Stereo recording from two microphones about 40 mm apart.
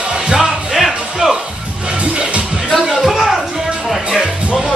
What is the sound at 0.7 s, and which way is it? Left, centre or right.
Music, centre.